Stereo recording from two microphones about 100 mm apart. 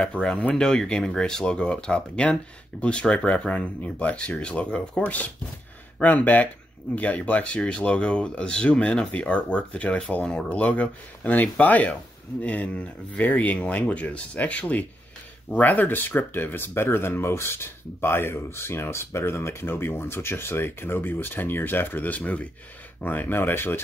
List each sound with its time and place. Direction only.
0.2 s speech: 10° left (ahead or behind)